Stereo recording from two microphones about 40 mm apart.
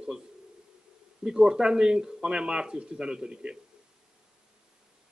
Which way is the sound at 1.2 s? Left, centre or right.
Centre.